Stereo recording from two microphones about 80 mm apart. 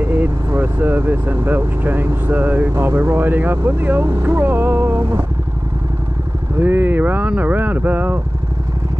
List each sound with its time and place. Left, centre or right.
0.0 s speech: right
6.6 s speech: right